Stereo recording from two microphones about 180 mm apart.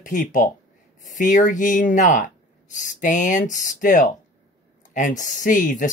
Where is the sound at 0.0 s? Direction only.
45° left (ahead or behind).